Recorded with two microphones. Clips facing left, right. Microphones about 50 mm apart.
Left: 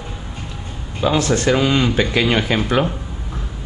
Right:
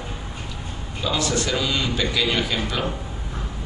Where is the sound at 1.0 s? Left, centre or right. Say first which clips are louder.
Left 6 dB; left.